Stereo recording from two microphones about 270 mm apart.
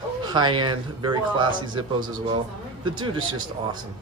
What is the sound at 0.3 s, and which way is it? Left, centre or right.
A man's voice, centre.